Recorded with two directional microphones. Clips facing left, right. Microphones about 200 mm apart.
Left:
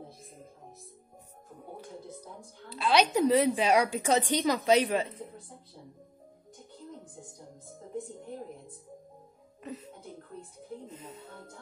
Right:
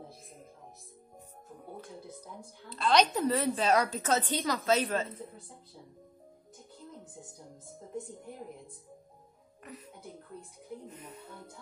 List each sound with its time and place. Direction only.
2.7 s a woman's voice: 5° left (ahead or behind)
9.6 s speech: 25° left (ahead or behind)